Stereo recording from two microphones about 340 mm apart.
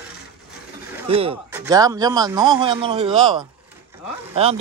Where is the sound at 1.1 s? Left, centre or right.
Centre.